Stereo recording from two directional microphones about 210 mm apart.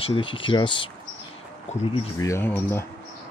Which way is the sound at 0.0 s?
25° left (ahead or behind).